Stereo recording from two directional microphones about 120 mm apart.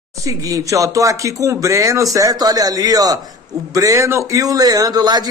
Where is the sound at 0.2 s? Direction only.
30° right (ahead or behind).